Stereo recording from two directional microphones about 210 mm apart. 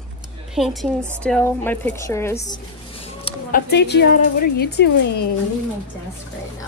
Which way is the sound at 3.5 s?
50° left (ahead or behind).